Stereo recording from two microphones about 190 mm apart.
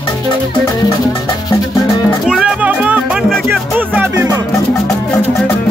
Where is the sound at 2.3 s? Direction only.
5° right (ahead or behind).